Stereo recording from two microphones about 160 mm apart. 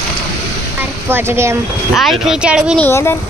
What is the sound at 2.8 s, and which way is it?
Speech, 15° left (ahead or behind).